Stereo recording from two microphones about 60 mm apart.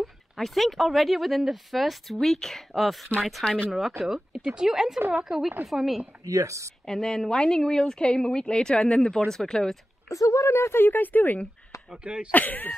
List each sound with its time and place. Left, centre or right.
0.0 s a woman's voice: centre
6.2 s speech: right
6.9 s a woman's voice: centre
10.0 s a woman's voice: left
12.0 s a woman's voice: centre
12.3 s speech: left